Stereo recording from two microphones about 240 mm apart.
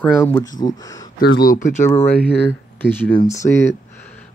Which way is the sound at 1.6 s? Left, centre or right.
Left.